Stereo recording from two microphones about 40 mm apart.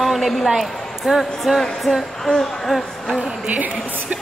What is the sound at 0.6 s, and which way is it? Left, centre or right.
A woman's voice, centre.